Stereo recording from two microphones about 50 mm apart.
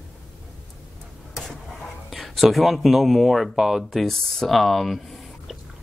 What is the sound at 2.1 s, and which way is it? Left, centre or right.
Speech, centre.